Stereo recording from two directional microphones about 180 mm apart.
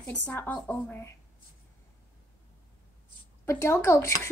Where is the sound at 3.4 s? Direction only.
15° left (ahead or behind).